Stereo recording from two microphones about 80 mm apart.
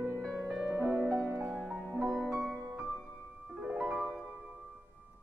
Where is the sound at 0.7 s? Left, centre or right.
Centre.